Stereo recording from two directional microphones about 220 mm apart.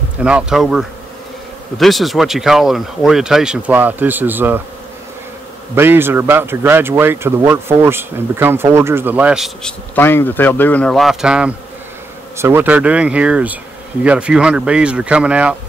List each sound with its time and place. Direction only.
0.2 s speech: 5° right (ahead or behind)
5.8 s speech: 10° right (ahead or behind)